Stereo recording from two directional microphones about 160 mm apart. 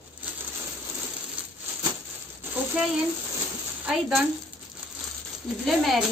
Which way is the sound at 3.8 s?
5° right (ahead or behind).